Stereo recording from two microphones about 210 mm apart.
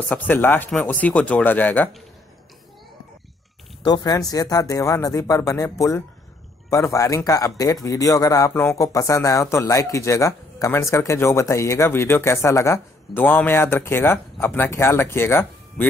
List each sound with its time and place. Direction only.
0.1 s speech: 10° left (ahead or behind)
3.8 s speech: 20° left (ahead or behind)